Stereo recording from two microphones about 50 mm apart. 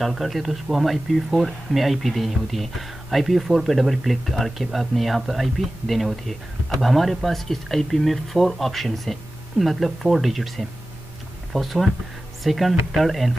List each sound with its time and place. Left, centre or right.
0.0 s speech: centre